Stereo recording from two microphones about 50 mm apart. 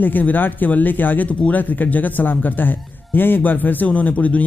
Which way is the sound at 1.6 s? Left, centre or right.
Left.